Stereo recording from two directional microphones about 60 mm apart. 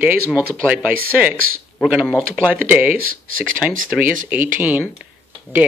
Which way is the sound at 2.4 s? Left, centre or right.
Right.